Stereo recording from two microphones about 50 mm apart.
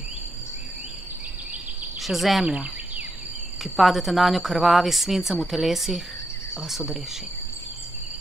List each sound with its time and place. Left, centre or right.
2.0 s speech: centre
2.4 s speech: right
3.6 s speech: centre
6.5 s cricket: centre